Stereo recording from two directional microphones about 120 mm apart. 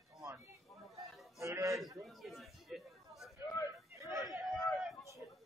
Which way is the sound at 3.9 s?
25° right (ahead or behind).